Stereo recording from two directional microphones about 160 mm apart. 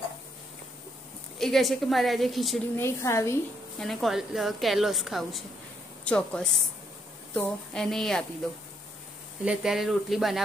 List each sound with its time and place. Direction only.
1.4 s a woman's voice: centre (ahead or behind)
2.7 s a woman's voice: 15° left (ahead or behind)
3.8 s a woman's voice: centre (ahead or behind)
9.4 s a woman's voice: 5° right (ahead or behind)